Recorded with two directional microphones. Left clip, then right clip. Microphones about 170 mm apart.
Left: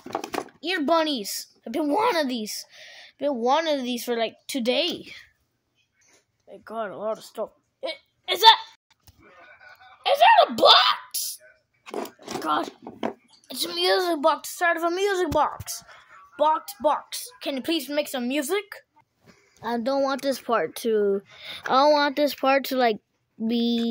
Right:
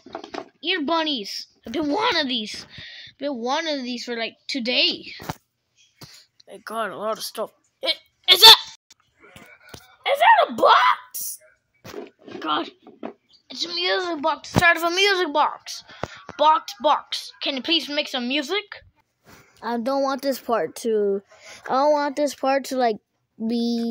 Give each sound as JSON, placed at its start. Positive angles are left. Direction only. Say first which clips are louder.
{"t": 0.1, "sound": "a sound", "louder": "left 4 dB", "side_deg": 15}
{"t": 1.6, "sound": "speech", "louder": "even", "side_deg": 5}
{"t": 2.0, "sound": "a woman's voice", "louder": "right 2 dB", "side_deg": 25}
{"t": 6.4, "sound": "speech", "louder": "right 4 dB", "side_deg": -5}
{"t": 7.4, "sound": "a sound", "louder": "right 10 dB", "side_deg": -10}
{"t": 10.0, "sound": "a sound", "louder": "even", "side_deg": 10}
{"t": 12.4, "sound": "speech", "louder": "even", "side_deg": 0}
{"t": 13.5, "sound": "a child's voice", "louder": "even", "side_deg": 25}
{"t": 13.9, "sound": "a woman's voice", "louder": "left 2 dB", "side_deg": 10}
{"t": 14.6, "sound": "a woman's voice", "louder": "right 8 dB", "side_deg": -5}
{"t": 19.6, "sound": "speech", "louder": "right 1 dB", "side_deg": -10}